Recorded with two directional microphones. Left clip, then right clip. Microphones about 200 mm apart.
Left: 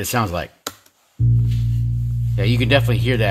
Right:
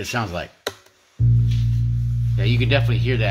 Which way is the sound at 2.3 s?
45° left (ahead or behind).